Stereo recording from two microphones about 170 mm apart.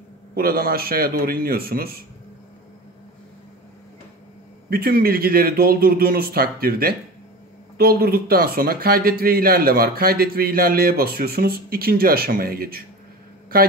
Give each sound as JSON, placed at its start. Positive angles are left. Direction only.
{"t": 0.3, "sound": "speech", "side_deg": -60}
{"t": 4.6, "sound": "speech", "side_deg": -60}